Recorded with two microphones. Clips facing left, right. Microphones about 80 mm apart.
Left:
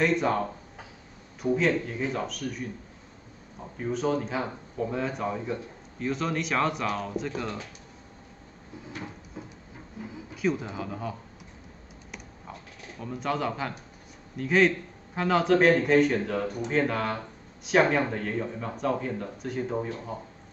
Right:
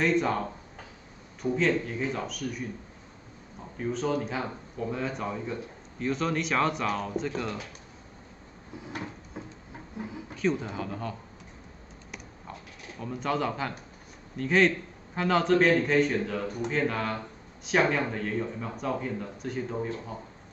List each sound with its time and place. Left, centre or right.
0.0 s a man's voice: centre
3.9 s a man's voice: centre
10.0 s a sound: right
10.3 s speech: centre
13.0 s a man's voice: centre